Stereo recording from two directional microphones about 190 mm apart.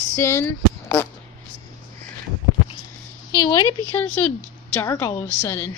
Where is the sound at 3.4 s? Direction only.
20° left (ahead or behind).